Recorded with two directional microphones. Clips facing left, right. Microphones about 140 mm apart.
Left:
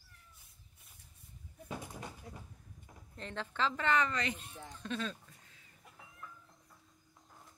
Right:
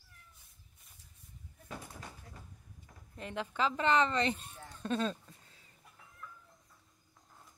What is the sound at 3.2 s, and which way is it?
A woman's voice, 10° right (ahead or behind).